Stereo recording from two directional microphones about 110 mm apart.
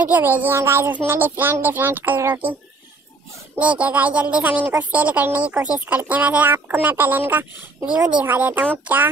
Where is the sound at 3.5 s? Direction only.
15° right (ahead or behind).